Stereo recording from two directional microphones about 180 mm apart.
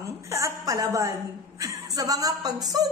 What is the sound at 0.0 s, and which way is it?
A woman's voice, 15° right (ahead or behind).